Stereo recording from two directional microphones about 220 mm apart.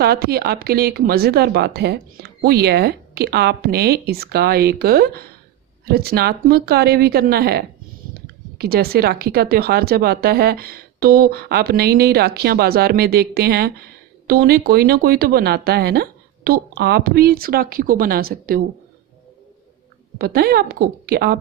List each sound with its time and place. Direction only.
0.0 s speech: 45° right (ahead or behind)
20.2 s speech: 45° right (ahead or behind)